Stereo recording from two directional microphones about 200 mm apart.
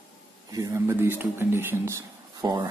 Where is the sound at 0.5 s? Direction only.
15° right (ahead or behind).